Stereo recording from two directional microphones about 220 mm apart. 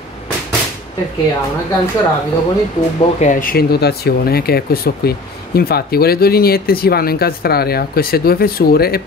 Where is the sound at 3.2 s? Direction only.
35° left (ahead or behind).